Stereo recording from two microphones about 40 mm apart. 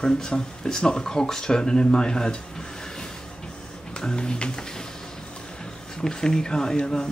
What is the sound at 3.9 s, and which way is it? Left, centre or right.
Music, left.